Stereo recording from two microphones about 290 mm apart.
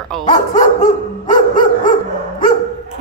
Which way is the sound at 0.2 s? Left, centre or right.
Left.